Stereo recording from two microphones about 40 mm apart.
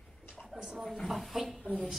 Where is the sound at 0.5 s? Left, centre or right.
Centre.